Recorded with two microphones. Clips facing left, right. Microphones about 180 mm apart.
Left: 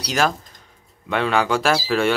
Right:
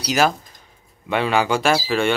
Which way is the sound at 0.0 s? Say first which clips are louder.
Right 2 dB; 5° right (ahead or behind).